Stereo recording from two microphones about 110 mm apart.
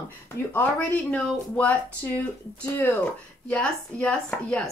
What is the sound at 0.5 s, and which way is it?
A woman's voice, 15° left (ahead or behind).